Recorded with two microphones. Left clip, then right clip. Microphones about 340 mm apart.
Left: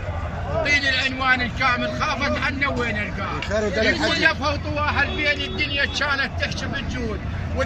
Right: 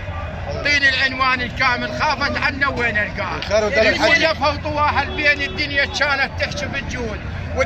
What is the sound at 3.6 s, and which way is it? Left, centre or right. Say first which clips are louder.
Speech: right 5 dB; right.